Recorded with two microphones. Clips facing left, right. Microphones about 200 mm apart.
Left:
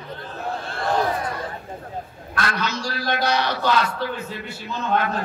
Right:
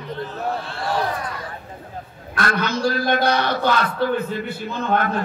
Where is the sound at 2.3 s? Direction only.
55° right (ahead or behind).